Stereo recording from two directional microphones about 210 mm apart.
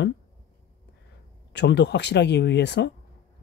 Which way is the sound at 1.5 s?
55° left (ahead or behind).